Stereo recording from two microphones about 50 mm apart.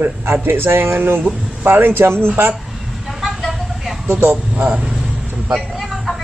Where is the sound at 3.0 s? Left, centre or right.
Centre.